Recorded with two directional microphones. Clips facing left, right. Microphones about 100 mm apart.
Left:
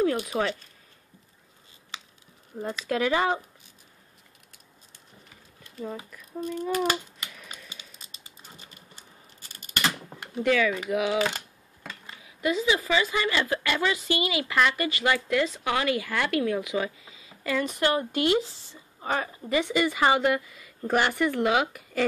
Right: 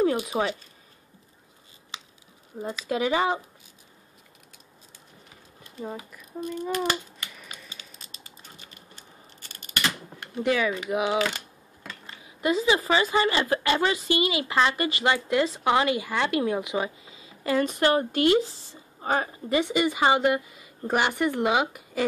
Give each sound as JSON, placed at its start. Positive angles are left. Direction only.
{"t": 0.2, "sound": "speech", "side_deg": -15}
{"t": 2.6, "sound": "speech", "side_deg": -10}
{"t": 6.1, "sound": "a sound", "side_deg": -10}
{"t": 6.7, "sound": "speech", "side_deg": 10}
{"t": 7.3, "sound": "a sound", "side_deg": -5}
{"t": 10.4, "sound": "a woman's voice", "side_deg": -20}
{"t": 12.3, "sound": "a woman's voice", "side_deg": -30}
{"t": 17.1, "sound": "a woman's voice", "side_deg": -35}
{"t": 19.6, "sound": "a woman's voice", "side_deg": -20}